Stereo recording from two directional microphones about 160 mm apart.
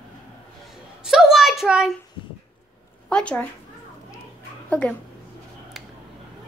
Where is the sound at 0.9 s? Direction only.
5° right (ahead or behind).